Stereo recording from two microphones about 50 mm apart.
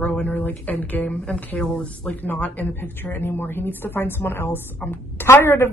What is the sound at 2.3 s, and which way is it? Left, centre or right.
Speech, left.